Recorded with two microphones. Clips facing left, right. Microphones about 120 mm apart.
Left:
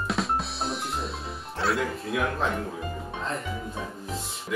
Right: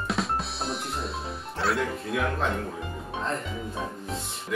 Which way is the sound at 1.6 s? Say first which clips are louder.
Even; centre (ahead or behind).